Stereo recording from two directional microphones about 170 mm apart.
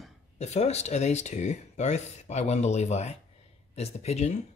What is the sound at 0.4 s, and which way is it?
Speech, 40° left (ahead or behind).